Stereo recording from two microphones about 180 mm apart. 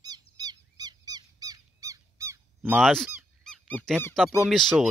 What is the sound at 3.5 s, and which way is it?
A man's voice, 5° left (ahead or behind).